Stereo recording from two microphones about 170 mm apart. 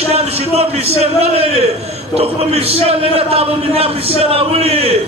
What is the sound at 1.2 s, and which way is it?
A man's voice, 40° right (ahead or behind).